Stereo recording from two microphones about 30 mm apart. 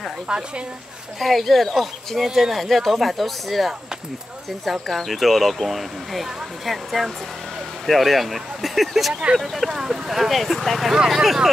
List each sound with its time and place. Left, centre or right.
0.3 s speech: right
1.2 s speech: centre
2.2 s speech: centre
2.5 s speech: centre
4.8 s speech: centre
10.1 s speech: centre